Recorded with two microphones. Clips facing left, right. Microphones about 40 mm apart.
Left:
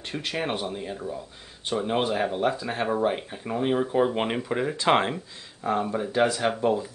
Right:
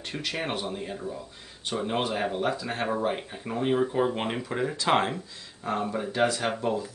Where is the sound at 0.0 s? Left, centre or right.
Centre.